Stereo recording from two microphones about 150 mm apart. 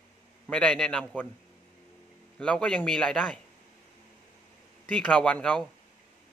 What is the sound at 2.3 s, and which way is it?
A man's voice, 5° left (ahead or behind).